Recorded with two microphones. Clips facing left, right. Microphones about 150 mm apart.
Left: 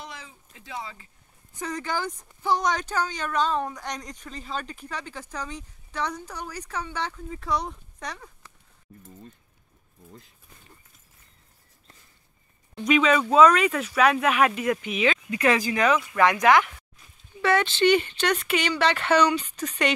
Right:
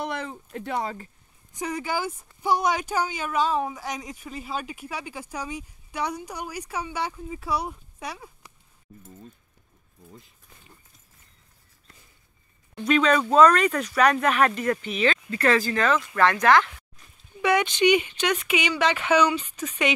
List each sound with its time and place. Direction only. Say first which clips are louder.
0.0 s speech: right 11 dB; 60° right (ahead or behind)
1.6 s speech: right 2 dB; 10° right (ahead or behind)
10.0 s speech: even; centre (ahead or behind)
12.7 s speech: even; 10° left (ahead or behind)
17.4 s speech: even; 15° right (ahead or behind)